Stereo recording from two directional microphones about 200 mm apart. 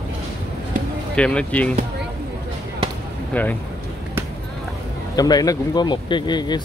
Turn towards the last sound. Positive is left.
turn(degrees=20)  # may be behind; listen again after turning